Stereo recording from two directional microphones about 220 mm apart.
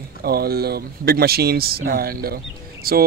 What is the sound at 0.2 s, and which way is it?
Speech, 45° right (ahead or behind).